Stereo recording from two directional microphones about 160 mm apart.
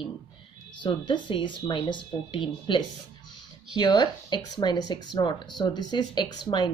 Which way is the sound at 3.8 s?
25° left (ahead or behind).